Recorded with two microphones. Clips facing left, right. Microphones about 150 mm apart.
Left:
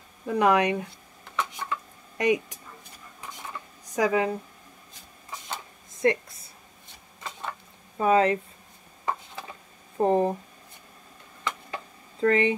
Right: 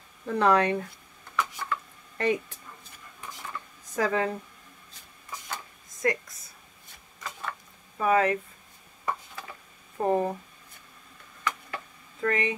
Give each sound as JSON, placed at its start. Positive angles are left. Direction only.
{"t": 0.3, "sound": "speech", "side_deg": 15}
{"t": 1.4, "sound": "a sound", "side_deg": 20}
{"t": 3.8, "sound": "speech", "side_deg": 15}
{"t": 5.3, "sound": "a sound", "side_deg": 25}
{"t": 8.0, "sound": "speech", "side_deg": 30}
{"t": 9.9, "sound": "speech", "side_deg": 25}
{"t": 11.4, "sound": "chop", "side_deg": 25}